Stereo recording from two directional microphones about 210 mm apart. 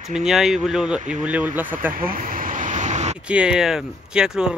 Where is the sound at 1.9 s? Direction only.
40° right (ahead or behind).